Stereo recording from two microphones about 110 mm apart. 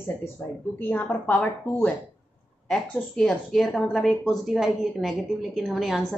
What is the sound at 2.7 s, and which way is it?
Speech, 10° left (ahead or behind).